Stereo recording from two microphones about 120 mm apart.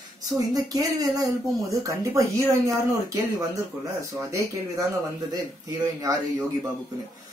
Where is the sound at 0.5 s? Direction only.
30° right (ahead or behind).